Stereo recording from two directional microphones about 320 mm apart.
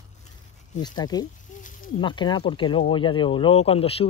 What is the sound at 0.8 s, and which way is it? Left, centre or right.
Speech, centre.